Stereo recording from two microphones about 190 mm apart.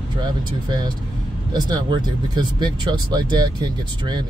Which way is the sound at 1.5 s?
20° right (ahead or behind).